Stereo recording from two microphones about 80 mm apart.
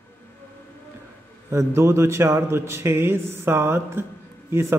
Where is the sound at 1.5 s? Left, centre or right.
Right.